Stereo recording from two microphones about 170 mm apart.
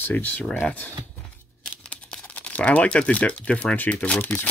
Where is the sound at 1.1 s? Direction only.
5° left (ahead or behind).